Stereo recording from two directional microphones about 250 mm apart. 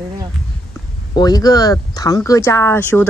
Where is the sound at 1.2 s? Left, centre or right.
Centre.